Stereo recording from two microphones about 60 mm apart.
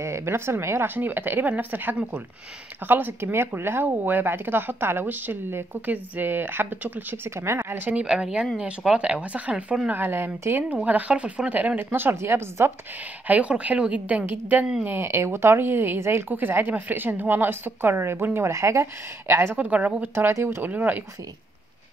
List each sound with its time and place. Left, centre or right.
0.0 s a woman's voice: right
7.2 s speech: right
8.1 s a woman's voice: centre
9.8 s a woman's voice: right
10.8 s speech: right
11.9 s speech: right
13.3 s speech: right
14.9 s a woman's voice: right
19.5 s speech: right
20.4 s a woman's voice: right
20.7 s speech: right